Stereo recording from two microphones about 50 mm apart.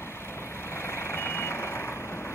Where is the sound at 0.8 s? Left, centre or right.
Left.